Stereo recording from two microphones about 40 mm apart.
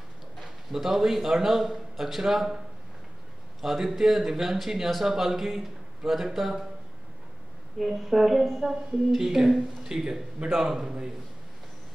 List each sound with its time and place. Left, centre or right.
0.4 s a man's voice: centre
3.6 s a woman's voice: centre
7.8 s a woman's voice: centre